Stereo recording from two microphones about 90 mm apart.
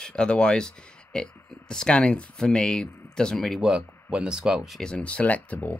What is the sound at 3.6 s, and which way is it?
Speech, 10° right (ahead or behind).